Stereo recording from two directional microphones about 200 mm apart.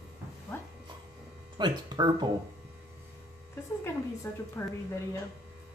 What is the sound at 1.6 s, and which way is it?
Speech, 20° right (ahead or behind).